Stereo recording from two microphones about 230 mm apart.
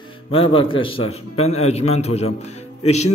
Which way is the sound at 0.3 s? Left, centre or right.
Left.